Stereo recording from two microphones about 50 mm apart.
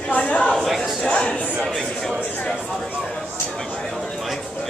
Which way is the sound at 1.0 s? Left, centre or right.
Left.